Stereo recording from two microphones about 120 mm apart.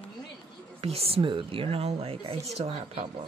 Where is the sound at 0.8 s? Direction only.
55° right (ahead or behind).